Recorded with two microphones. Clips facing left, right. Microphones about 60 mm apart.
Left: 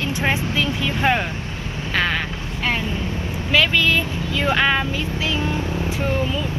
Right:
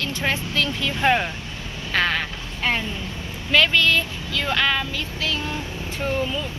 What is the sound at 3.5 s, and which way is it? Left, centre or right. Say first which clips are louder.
Speech: even; centre.